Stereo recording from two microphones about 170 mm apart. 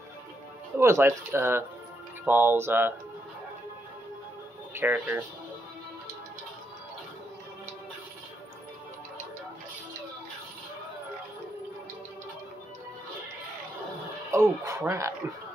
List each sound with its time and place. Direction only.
0.7 s speech: 15° right (ahead or behind)
4.7 s speech: 10° right (ahead or behind)
14.3 s speech: 20° right (ahead or behind)